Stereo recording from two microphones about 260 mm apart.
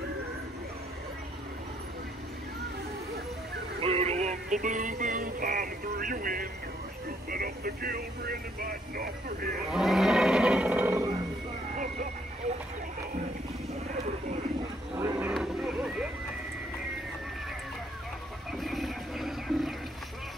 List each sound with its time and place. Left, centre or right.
3.8 s music: right
7.2 s speech: right
9.7 s roar: centre
11.7 s bow-wow: right
15.0 s a sound: centre
18.5 s a sound: centre